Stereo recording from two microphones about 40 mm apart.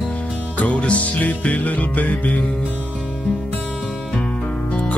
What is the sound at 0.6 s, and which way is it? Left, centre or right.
Music, left.